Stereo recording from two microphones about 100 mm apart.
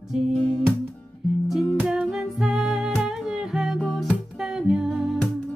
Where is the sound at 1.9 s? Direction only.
5° right (ahead or behind).